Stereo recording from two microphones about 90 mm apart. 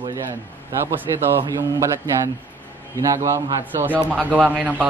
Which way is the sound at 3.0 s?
35° right (ahead or behind).